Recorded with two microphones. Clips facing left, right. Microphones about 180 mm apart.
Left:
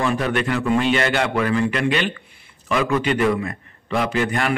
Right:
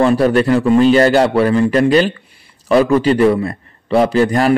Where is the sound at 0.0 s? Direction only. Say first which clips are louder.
Right 9 dB; 35° right (ahead or behind).